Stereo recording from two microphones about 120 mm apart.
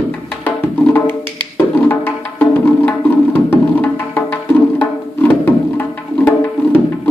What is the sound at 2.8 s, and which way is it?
Music, 15° left (ahead or behind).